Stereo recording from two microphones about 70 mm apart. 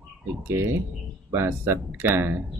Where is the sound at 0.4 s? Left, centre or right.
Right.